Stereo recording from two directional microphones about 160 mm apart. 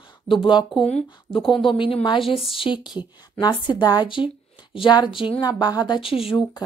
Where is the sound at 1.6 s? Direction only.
35° left (ahead or behind).